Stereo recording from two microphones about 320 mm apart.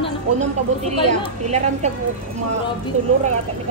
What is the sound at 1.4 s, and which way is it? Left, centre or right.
Speech, right.